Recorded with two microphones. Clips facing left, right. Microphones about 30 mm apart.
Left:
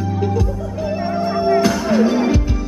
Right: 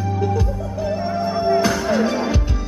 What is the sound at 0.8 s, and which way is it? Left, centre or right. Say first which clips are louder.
Music: left 2 dB; centre.